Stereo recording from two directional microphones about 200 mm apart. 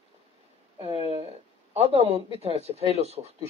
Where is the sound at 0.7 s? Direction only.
30° right (ahead or behind).